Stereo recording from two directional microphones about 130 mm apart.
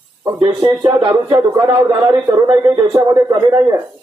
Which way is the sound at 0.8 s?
35° right (ahead or behind).